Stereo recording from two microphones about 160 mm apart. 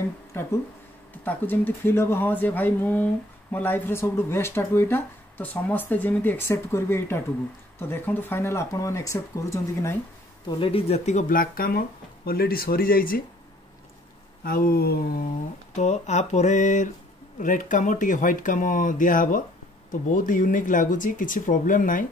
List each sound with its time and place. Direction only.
0.3 s speech: 15° left (ahead or behind)
10.6 s speech: 40° left (ahead or behind); by 13.2 s 65° left (ahead or behind)
14.4 s speech: 65° left (ahead or behind)
15.7 s speech: 45° left (ahead or behind)